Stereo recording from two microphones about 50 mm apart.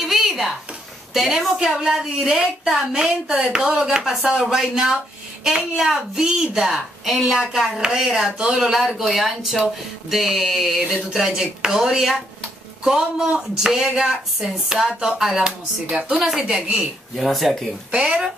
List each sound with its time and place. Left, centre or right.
0.0 s a sound: centre
1.1 s speech: centre
1.6 s speech: centre
7.1 s speech: centre
17.9 s speech: centre